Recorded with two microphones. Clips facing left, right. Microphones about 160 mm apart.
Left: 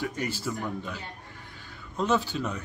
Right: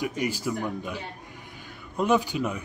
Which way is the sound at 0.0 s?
15° right (ahead or behind).